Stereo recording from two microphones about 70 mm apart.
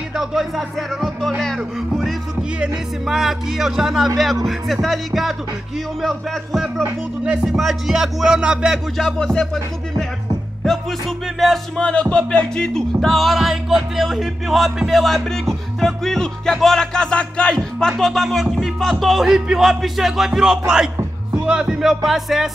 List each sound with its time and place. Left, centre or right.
0.1 s music: centre
2.6 s music: centre
8.9 s speech: centre
10.6 s music: centre
11.8 s music: centre
16.5 s speech: centre
17.7 s music: centre